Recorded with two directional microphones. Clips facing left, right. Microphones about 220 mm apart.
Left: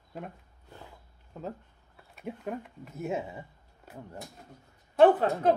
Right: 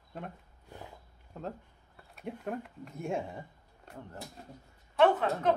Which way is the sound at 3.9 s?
5° left (ahead or behind).